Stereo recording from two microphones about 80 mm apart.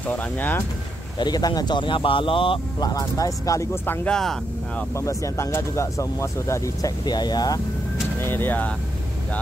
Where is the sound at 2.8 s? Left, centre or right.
Left.